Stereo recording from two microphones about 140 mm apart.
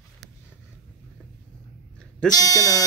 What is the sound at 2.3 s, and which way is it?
Speech, 25° left (ahead or behind).